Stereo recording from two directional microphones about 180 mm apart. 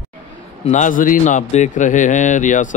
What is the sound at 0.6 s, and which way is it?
A man's voice, 45° left (ahead or behind).